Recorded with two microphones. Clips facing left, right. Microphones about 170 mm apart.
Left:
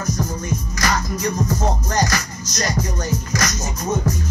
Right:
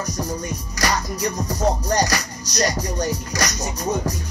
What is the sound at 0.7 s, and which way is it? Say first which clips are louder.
Music: right 1 dB; 35° right (ahead or behind).